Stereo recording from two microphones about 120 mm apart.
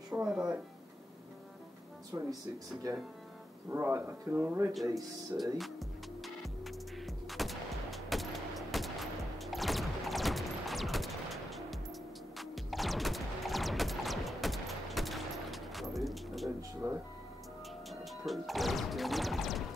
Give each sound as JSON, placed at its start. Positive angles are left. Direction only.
{"t": 0.3, "sound": "speech", "side_deg": -5}
{"t": 2.1, "sound": "speech", "side_deg": -25}
{"t": 3.7, "sound": "speech", "side_deg": -20}
{"t": 5.4, "sound": "music", "side_deg": 0}
{"t": 7.2, "sound": "a sound", "side_deg": 0}
{"t": 12.4, "sound": "music", "side_deg": 0}
{"t": 16.8, "sound": "music", "side_deg": -25}
{"t": 18.2, "sound": "music", "side_deg": 0}